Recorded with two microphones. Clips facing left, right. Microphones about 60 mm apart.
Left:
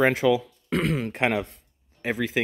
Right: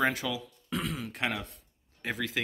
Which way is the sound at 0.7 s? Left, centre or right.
Left.